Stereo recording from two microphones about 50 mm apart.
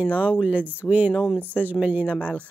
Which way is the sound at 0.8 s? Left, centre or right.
Left.